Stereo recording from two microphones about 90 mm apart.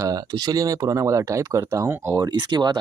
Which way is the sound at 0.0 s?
45° right (ahead or behind).